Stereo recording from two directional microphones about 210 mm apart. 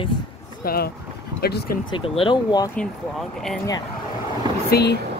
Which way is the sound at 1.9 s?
25° left (ahead or behind).